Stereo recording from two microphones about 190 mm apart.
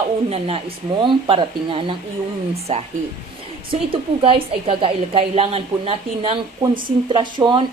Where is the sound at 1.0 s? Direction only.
25° right (ahead or behind).